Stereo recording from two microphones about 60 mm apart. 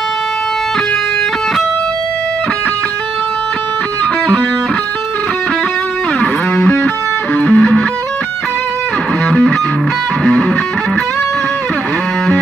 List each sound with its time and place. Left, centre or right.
7.3 s music: centre